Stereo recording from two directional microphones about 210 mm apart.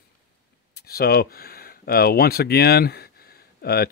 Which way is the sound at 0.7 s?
50° left (ahead or behind).